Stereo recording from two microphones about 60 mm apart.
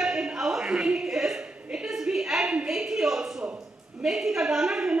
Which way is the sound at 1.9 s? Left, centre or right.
Centre.